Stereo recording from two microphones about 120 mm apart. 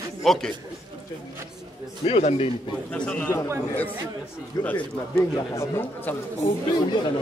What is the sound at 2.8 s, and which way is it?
Speech, 10° left (ahead or behind).